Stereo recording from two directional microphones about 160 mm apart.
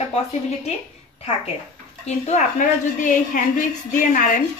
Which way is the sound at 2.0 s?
45° left (ahead or behind).